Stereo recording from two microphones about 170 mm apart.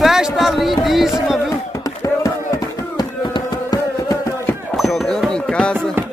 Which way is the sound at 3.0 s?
25° left (ahead or behind).